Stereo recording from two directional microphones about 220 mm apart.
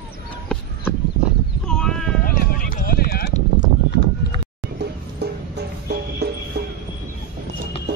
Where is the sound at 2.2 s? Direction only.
40° left (ahead or behind).